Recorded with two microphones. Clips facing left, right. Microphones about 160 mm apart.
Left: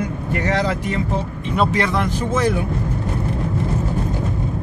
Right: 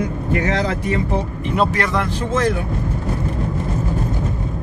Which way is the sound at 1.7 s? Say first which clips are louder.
Left 1 dB; 20° left (ahead or behind).